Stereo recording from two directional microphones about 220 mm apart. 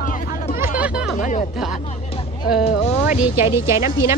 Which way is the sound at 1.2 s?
35° left (ahead or behind).